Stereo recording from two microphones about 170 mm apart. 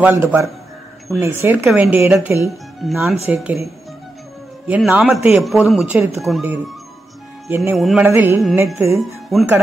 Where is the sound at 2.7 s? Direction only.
Centre (ahead or behind).